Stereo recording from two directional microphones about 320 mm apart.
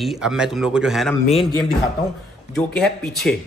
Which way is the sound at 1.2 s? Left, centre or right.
Centre.